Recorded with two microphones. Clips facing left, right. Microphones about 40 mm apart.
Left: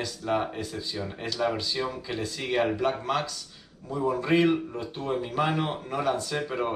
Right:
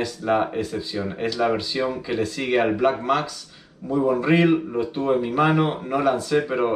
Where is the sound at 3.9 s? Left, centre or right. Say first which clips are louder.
Right 6 dB; centre.